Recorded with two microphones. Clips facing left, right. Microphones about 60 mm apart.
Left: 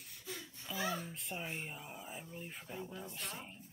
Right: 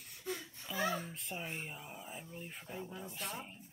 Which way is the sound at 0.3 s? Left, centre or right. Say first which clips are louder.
Right 6 dB; right.